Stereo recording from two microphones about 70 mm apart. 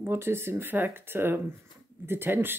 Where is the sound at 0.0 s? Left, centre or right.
Right.